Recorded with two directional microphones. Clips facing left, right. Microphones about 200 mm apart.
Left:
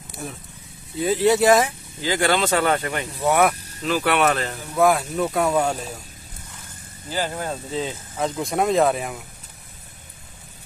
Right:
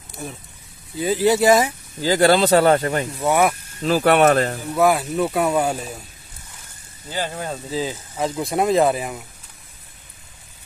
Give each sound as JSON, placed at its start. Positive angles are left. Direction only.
{"t": 0.2, "sound": "speech", "side_deg": 0}
{"t": 2.0, "sound": "speech", "side_deg": -40}
{"t": 3.1, "sound": "speech", "side_deg": 0}
{"t": 3.8, "sound": "speech", "side_deg": -40}
{"t": 4.7, "sound": "speech", "side_deg": -5}
{"t": 7.7, "sound": "speech", "side_deg": 0}